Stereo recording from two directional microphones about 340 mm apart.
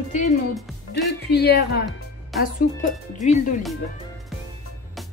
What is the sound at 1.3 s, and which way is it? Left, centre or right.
Music, left.